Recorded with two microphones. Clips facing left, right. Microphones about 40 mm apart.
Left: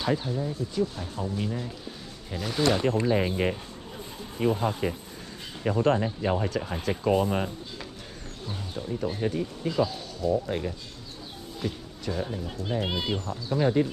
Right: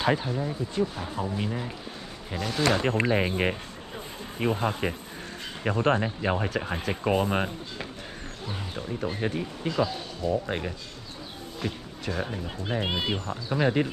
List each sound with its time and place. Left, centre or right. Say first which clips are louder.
0.0 s speech: right 2 dB; right
0.3 s speech: even; right
2.3 s speech: right 1 dB; centre
3.1 s speech: even; right
7.2 s speech: right 1 dB; right
9.7 s speech: even; centre
10.4 s speech: left 1 dB; right
11.6 s a sound: even; centre
12.2 s speech: even; right
13.3 s speech: left 1 dB; right